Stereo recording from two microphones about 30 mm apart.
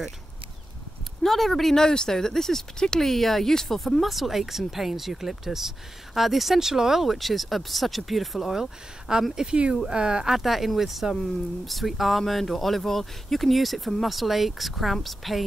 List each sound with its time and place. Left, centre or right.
1.2 s speech: centre
6.6 s speech: centre
7.1 s speech: centre
8.5 s speech: centre
10.3 s speech: centre